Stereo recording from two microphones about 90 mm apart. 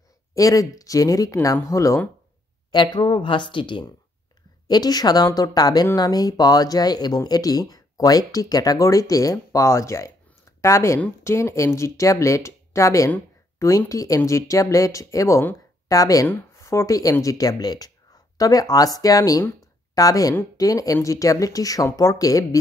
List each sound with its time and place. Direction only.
0.3 s speech: 40° left (ahead or behind)
2.7 s speech: 55° left (ahead or behind)
4.6 s speech: 50° left (ahead or behind)
16.3 s speech: 30° left (ahead or behind)